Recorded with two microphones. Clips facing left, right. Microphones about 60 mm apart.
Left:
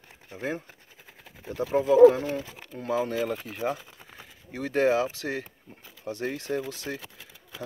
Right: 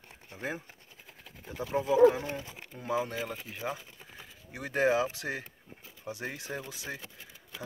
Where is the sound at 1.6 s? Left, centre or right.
Left.